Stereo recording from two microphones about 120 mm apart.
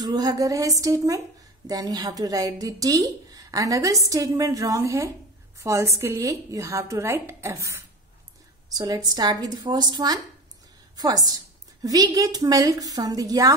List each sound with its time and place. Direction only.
0.0 s a woman's voice: 35° right (ahead or behind)